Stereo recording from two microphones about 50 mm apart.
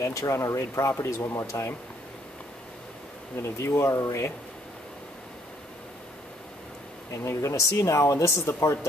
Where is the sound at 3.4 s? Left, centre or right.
Left.